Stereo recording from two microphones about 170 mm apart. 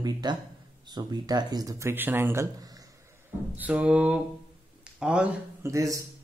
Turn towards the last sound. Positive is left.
turn(degrees=-20)  # may be behind; listen again after turning